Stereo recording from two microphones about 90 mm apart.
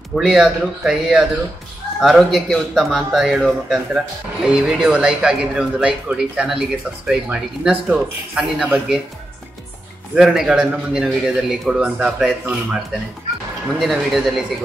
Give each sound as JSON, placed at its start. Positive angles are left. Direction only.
{"t": 0.1, "sound": "a man's voice", "side_deg": 0}
{"t": 10.1, "sound": "a man's voice", "side_deg": -5}
{"t": 13.7, "sound": "a man's voice", "side_deg": 0}